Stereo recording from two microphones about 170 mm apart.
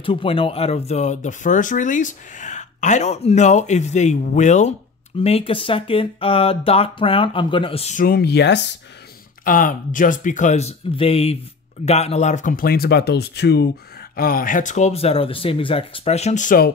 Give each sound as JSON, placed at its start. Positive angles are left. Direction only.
{"t": 0.0, "sound": "speech", "side_deg": 30}
{"t": 8.0, "sound": "speech", "side_deg": 65}
{"t": 9.4, "sound": "speech", "side_deg": 55}
{"t": 14.1, "sound": "speech", "side_deg": 60}